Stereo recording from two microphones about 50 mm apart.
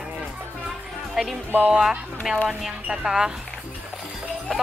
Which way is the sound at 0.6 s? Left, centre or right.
Centre.